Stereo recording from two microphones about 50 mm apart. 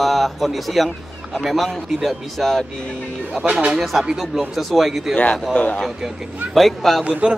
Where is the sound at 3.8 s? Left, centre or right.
Centre.